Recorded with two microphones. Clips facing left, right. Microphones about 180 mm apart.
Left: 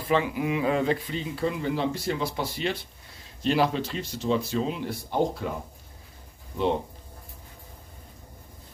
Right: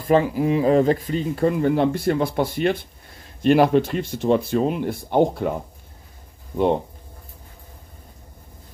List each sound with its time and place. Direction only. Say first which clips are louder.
0.0 s speech: right 7 dB; 45° right (ahead or behind)